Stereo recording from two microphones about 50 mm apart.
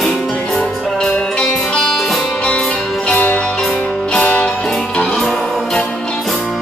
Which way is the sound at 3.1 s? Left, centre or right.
Left.